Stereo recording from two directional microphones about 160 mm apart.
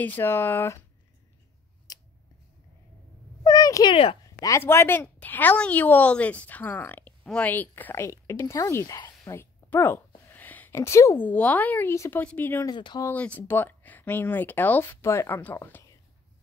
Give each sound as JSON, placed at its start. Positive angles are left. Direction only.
{"t": 0.0, "sound": "a woman's voice", "side_deg": 10}
{"t": 1.9, "sound": "scissors", "side_deg": 25}
{"t": 3.4, "sound": "a sound", "side_deg": 25}
{"t": 4.5, "sound": "a woman's voice", "side_deg": 15}
{"t": 12.7, "sound": "speech", "side_deg": 30}
{"t": 13.0, "sound": "a woman's voice", "side_deg": 10}